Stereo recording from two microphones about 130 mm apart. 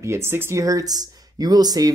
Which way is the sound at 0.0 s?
20° right (ahead or behind).